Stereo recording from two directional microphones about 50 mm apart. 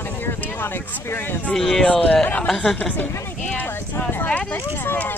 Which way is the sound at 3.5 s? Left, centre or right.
Left.